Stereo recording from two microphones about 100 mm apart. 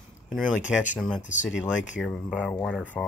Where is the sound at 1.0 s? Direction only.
5° left (ahead or behind).